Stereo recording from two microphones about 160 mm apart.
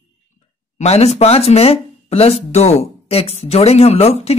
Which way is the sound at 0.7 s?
40° left (ahead or behind).